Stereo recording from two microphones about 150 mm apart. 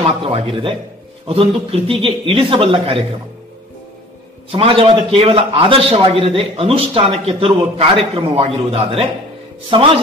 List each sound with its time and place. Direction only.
0.2 s a man's voice: 35° right (ahead or behind)
4.5 s a man's voice: 35° right (ahead or behind)